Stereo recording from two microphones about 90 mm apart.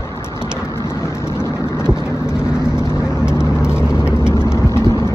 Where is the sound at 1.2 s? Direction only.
30° left (ahead or behind).